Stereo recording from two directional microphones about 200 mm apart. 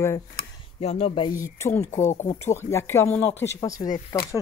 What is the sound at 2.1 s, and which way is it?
Speech, 35° left (ahead or behind).